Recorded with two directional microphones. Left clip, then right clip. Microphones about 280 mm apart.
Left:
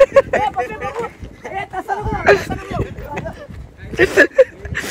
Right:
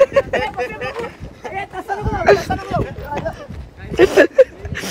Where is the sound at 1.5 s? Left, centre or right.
Centre.